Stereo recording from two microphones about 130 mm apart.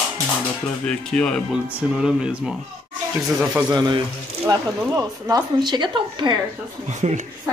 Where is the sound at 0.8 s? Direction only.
5° left (ahead or behind).